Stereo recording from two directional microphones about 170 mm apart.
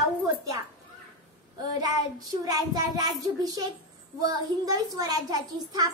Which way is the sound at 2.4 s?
20° right (ahead or behind).